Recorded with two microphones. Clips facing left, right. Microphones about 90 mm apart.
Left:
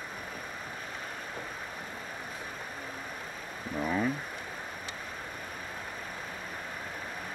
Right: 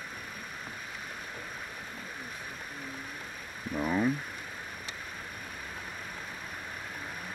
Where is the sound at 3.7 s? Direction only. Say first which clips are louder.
Right 1 dB; 10° right (ahead or behind).